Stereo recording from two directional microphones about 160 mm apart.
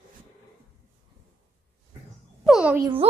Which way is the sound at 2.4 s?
5° right (ahead or behind).